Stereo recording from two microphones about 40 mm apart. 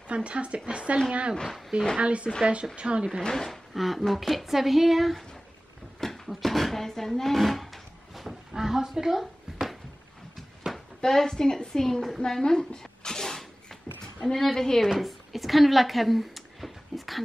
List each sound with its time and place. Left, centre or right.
0.1 s speech: right
1.3 s a woman's voice: centre
2.0 s speech: right
3.3 s a woman's voice: centre
3.7 s speech: centre
5.9 s a sound: centre
11.0 s a woman's voice: centre
12.3 s a sound: centre
14.2 s a woman's voice: centre
14.8 s speech: centre